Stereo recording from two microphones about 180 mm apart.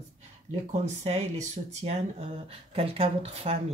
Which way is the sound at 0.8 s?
40° right (ahead or behind).